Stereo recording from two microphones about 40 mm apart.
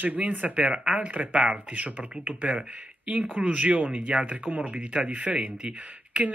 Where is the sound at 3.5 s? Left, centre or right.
Right.